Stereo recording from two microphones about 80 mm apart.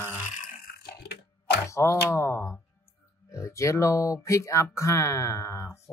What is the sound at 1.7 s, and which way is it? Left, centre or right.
Speech, left.